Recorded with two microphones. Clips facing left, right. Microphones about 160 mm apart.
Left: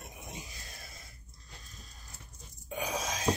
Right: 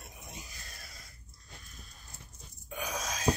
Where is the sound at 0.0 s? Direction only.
15° left (ahead or behind).